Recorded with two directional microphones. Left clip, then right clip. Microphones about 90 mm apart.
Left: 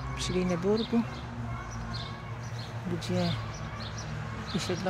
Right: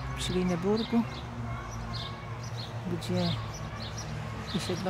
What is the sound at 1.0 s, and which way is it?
Speech, 45° right (ahead or behind).